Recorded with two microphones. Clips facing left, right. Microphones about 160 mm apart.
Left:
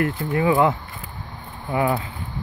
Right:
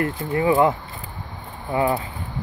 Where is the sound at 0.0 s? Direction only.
25° right (ahead or behind).